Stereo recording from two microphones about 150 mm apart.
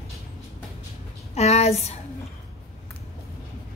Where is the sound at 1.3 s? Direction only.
45° left (ahead or behind).